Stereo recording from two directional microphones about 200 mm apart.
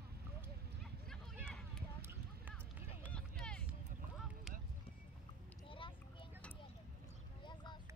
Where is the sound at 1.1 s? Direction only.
5° left (ahead or behind).